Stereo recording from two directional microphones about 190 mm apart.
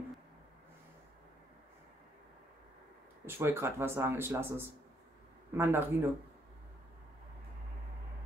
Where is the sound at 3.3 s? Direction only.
10° right (ahead or behind).